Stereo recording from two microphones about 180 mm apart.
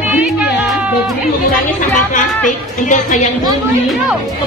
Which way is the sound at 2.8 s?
45° left (ahead or behind).